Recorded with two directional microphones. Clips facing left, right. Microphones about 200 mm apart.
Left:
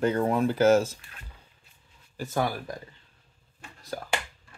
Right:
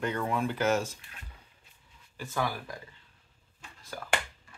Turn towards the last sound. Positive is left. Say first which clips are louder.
# left 6 dB
turn(degrees=40)  # may be behind; listen again after turning